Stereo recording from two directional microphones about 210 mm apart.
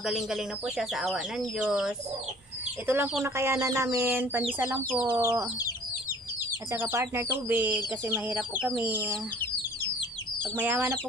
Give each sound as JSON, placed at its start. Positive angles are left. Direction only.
{"t": 0.0, "sound": "speech", "side_deg": 0}
{"t": 2.9, "sound": "chicken", "side_deg": -5}
{"t": 6.7, "sound": "chicken", "side_deg": -10}
{"t": 10.6, "sound": "chicken", "side_deg": -10}